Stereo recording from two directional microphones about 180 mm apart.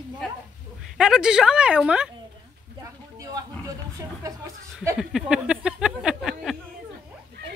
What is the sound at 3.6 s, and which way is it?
Speech, 20° right (ahead or behind).